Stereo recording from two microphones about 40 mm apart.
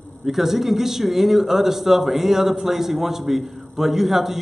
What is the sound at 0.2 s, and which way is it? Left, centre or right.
A man's voice, centre.